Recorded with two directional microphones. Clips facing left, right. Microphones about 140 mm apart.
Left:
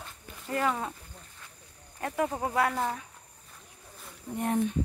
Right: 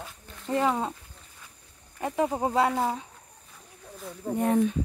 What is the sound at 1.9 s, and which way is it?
Speech, 20° right (ahead or behind).